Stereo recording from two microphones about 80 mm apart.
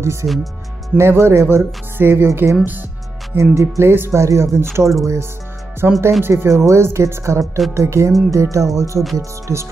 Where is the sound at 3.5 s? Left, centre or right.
Right.